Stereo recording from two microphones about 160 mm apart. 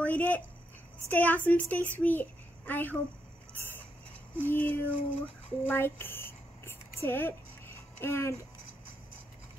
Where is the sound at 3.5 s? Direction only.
15° left (ahead or behind).